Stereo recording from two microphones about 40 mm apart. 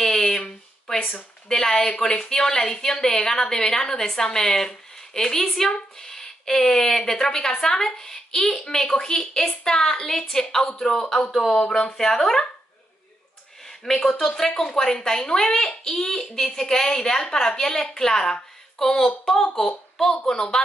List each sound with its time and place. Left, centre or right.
0.4 s a sound: centre
1.5 s speech: centre
13.7 s a woman's voice: centre